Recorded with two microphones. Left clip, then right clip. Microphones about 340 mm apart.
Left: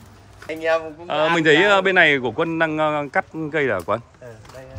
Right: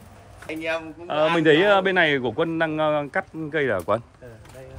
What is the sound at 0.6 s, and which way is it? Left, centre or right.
Speech, left.